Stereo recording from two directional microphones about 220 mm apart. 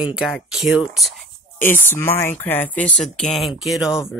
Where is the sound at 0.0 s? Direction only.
Centre (ahead or behind).